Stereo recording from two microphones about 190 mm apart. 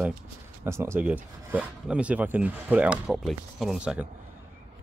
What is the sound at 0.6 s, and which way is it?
Speech, 15° right (ahead or behind).